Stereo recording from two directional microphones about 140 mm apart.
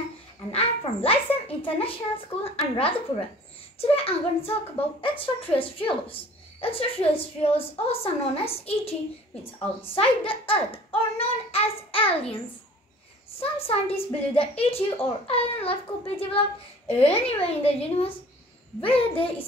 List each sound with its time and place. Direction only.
0.5 s a child's voice: 45° left (ahead or behind)
9.9 s a woman's voice: 40° left (ahead or behind)
13.4 s a child's voice: 45° left (ahead or behind)